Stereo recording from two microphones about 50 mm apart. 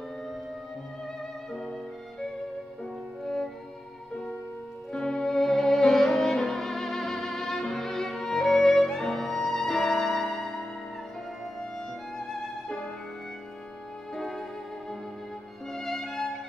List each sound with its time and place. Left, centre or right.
1.5 s music: centre
4.9 s violin: centre
12.2 s music: centre
14.1 s music: centre
15.7 s music: centre